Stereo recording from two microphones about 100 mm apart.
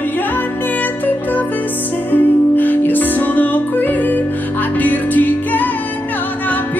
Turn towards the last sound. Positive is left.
turn(degrees=15)  # may be behind; listen again after turning